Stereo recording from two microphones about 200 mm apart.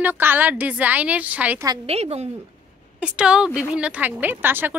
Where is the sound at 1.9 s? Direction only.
30° right (ahead or behind).